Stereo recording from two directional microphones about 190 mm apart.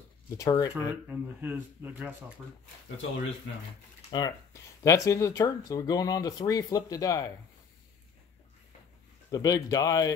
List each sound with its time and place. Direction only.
0.4 s speech: 15° left (ahead or behind)
1.0 s speech: 10° right (ahead or behind)
4.1 s speech: 25° left (ahead or behind)
9.3 s speech: 20° left (ahead or behind)